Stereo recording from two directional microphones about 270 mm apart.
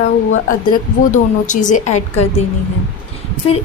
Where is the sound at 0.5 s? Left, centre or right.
Left.